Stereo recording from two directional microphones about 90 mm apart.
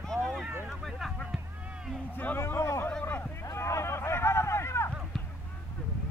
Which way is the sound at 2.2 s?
25° left (ahead or behind).